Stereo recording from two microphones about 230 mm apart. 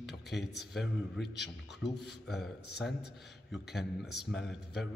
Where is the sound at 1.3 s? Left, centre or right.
Left.